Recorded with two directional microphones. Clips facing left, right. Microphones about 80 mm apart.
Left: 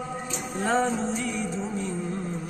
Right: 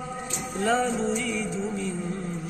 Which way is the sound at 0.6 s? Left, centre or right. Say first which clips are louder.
Right 1 dB; left.